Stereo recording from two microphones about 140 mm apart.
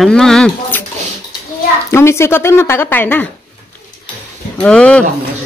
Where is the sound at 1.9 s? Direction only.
20° left (ahead or behind).